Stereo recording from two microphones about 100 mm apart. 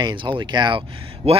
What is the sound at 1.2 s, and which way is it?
Speech, 90° right.